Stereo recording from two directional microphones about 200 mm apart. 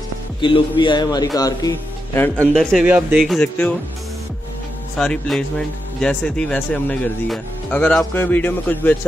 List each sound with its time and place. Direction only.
0.4 s a man's voice: 25° left (ahead or behind); by 3.7 s 5° left (ahead or behind)
4.9 s speech: 5° left (ahead or behind)